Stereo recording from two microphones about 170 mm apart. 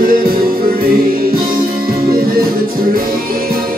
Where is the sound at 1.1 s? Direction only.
60° right (ahead or behind).